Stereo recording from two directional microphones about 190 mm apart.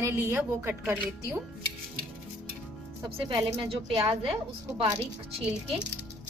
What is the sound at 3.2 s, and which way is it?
A woman's voice, 25° right (ahead or behind).